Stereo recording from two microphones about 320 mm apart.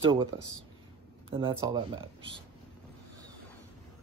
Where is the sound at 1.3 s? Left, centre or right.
Centre.